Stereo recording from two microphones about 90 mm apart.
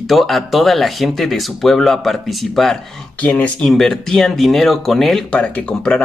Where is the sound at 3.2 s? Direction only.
20° left (ahead or behind).